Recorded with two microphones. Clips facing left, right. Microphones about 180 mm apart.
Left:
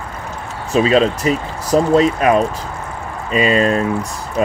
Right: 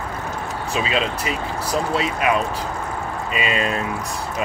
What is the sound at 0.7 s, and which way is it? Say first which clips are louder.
Speech: left 10 dB; 40° left (ahead or behind).